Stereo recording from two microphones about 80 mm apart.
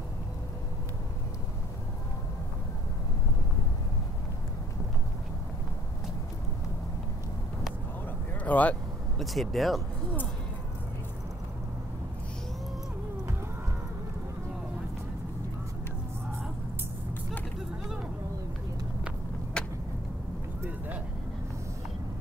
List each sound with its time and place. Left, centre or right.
8.5 s speech: centre
9.2 s speech: centre
19.6 s vehicle: centre